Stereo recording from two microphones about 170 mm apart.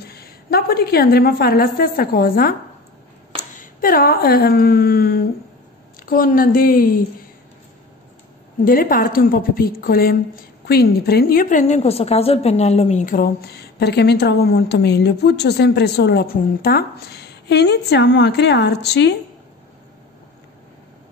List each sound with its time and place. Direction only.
0.0 s a woman's voice: 65° left (ahead or behind)
8.6 s a woman's voice: 55° left (ahead or behind); by 19.1 s 80° left